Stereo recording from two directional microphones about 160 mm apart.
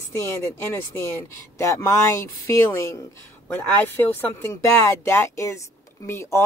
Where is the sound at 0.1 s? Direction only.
20° left (ahead or behind).